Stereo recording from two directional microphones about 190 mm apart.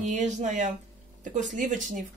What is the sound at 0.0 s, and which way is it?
A woman's voice, 40° right (ahead or behind).